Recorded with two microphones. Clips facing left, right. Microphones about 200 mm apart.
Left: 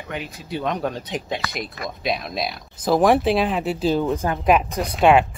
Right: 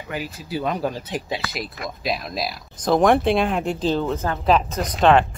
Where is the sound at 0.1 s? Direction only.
5° right (ahead or behind).